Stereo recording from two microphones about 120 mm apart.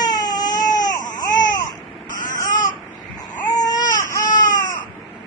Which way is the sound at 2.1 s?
90° left.